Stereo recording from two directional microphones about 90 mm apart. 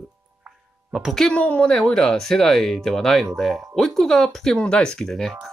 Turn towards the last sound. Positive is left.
turn(degrees=0)  # may be behind; listen again after turning